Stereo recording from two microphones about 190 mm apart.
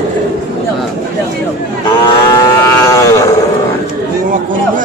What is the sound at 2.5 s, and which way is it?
Livestock, 15° left (ahead or behind).